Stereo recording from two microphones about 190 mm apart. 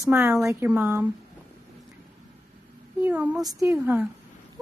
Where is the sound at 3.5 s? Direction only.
15° right (ahead or behind).